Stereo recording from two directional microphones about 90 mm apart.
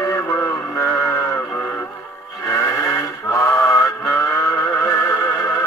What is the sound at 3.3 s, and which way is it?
Synthetic singing, 30° left (ahead or behind).